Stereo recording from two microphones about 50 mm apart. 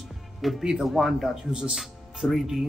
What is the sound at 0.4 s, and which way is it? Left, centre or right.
Speech, centre.